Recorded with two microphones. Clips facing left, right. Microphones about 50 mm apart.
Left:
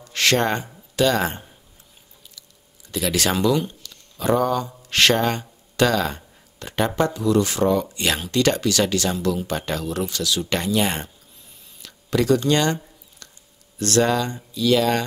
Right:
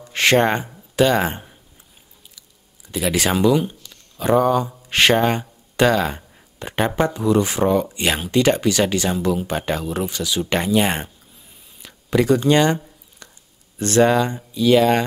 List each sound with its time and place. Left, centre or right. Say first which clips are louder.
0.0 s speech: right 4 dB; right
2.9 s speech: right 2 dB; centre
11.8 s a sound: right 3 dB; centre
13.7 s speech: right 4 dB; right